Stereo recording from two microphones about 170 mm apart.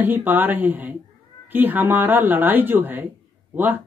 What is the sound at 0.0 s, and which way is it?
A woman's voice, 10° right (ahead or behind).